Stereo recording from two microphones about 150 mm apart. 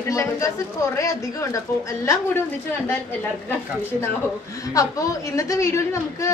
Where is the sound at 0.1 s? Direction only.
20° left (ahead or behind).